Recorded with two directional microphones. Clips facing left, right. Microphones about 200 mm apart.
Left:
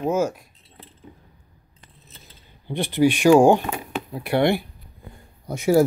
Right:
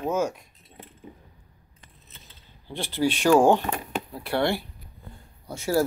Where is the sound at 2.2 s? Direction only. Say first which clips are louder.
Left 9 dB; 15° left (ahead or behind).